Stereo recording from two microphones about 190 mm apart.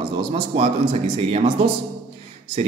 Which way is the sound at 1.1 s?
30° right (ahead or behind).